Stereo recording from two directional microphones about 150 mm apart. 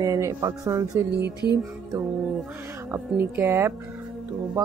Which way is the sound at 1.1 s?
90° right.